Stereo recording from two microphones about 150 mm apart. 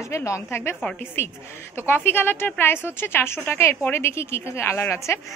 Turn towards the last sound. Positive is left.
turn(degrees=15)  # may be behind; listen again after turning